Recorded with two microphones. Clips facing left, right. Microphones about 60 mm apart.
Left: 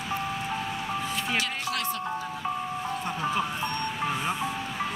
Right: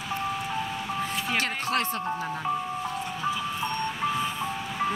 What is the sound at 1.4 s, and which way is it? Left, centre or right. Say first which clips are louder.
Music: right 3 dB; right.